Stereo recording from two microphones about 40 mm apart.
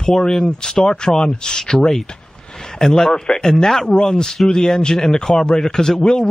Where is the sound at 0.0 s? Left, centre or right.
Centre.